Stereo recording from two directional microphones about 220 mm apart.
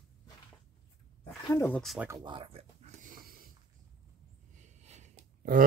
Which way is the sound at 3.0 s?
40° right (ahead or behind).